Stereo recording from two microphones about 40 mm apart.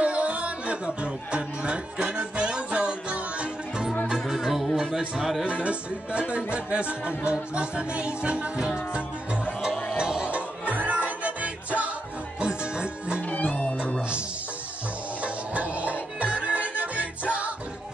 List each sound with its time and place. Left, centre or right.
0.0 s music: right
4.3 s music: centre
4.9 s speech: centre
5.4 s music: right
10.3 s music: right
12.4 s music: right
13.2 s music: left
15.2 s music: right